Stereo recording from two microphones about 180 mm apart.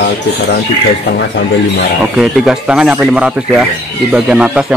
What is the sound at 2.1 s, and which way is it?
Speech, centre (ahead or behind).